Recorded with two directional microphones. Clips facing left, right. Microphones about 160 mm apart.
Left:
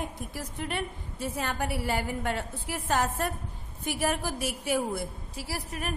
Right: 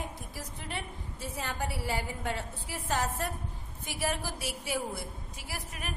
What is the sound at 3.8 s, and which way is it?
Speech, 55° left (ahead or behind).